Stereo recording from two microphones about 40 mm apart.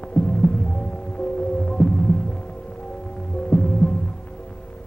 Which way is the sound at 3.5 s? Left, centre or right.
Left.